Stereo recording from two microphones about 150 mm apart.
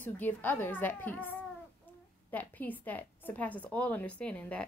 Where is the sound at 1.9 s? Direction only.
10° left (ahead or behind).